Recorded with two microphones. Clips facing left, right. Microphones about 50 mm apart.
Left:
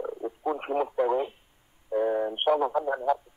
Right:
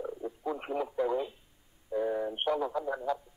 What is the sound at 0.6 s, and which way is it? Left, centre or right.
Speech, left.